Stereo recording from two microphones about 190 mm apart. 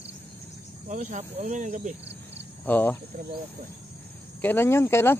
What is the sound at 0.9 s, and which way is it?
Speech, 40° right (ahead or behind).